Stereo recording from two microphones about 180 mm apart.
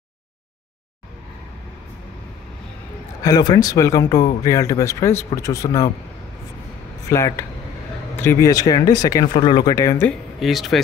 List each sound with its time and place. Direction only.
3.3 s speech: 20° left (ahead or behind)
7.1 s speech: 15° left (ahead or behind)
10.4 s speech: centre (ahead or behind)